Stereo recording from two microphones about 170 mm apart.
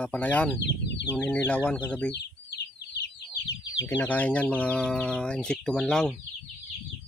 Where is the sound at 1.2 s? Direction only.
10° left (ahead or behind).